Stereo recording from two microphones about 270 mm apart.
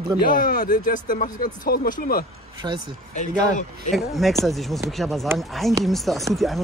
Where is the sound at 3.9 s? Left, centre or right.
Centre.